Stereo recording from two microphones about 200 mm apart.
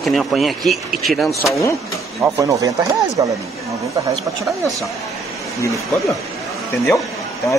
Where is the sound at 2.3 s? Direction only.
15° right (ahead or behind).